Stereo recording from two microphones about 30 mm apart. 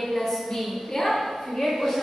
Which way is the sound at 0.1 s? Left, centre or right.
Centre.